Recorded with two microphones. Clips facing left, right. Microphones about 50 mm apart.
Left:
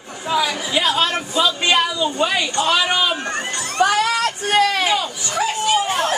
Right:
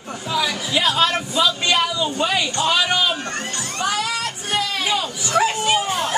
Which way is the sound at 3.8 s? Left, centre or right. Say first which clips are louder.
Left 7 dB; left.